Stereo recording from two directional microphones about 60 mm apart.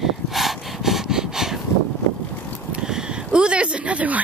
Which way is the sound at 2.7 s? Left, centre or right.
Centre.